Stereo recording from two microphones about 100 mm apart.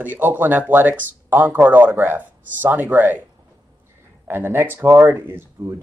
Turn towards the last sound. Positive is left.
turn(degrees=-25)  # may be behind; listen again after turning